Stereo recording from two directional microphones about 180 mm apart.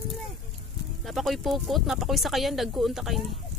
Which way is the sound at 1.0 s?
Centre (ahead or behind).